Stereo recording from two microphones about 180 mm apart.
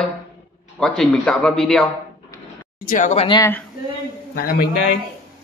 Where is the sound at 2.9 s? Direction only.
45° left (ahead or behind).